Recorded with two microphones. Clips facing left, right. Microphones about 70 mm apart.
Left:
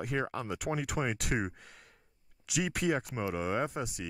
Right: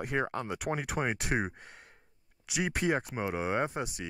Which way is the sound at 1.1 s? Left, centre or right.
Right.